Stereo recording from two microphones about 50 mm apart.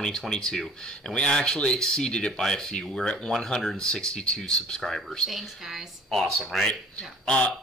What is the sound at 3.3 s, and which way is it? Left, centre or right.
Speech, centre.